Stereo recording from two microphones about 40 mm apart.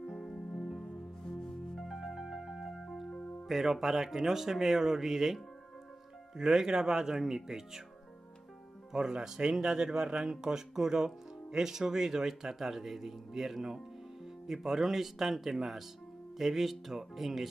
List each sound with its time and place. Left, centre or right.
0.0 s music: centre
1.8 s music: centre
3.1 s music: centre
3.4 s speech: centre
8.9 s speech: centre